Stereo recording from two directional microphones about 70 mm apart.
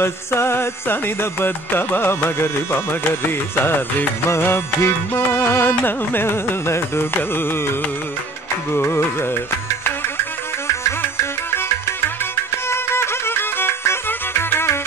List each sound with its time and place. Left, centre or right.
0.0 s music: left
8.7 s music: left
10.8 s music: left
12.6 s music: left